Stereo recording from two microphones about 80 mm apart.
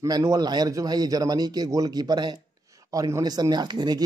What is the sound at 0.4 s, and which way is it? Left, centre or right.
Speech, right.